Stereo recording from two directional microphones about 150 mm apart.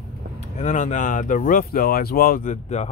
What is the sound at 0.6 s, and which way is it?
Speech, 50° left (ahead or behind).